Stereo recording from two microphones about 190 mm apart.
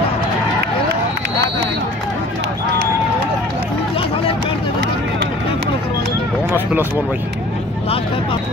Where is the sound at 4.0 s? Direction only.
30° left (ahead or behind).